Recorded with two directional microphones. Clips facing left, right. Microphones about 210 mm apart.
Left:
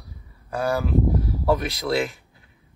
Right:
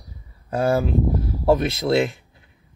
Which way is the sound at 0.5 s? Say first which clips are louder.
Right 3 dB; 30° right (ahead or behind).